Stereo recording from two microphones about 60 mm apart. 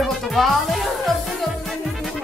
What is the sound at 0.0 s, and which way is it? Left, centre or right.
Music, centre.